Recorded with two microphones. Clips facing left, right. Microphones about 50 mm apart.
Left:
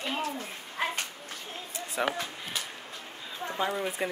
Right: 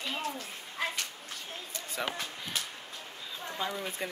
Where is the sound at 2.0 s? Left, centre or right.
Centre.